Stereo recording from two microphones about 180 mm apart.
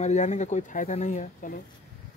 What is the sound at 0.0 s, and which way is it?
Speech, 40° left (ahead or behind).